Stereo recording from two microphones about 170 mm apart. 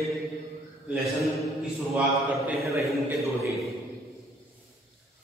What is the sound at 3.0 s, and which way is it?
Speech, 15° right (ahead or behind).